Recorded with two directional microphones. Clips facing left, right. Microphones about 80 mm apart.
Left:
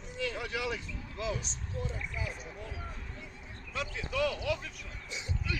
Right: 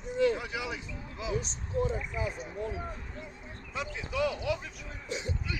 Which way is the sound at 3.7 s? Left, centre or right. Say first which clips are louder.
Right 1 dB; centre.